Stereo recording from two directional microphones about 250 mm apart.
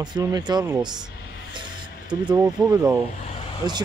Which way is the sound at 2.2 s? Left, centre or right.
Centre.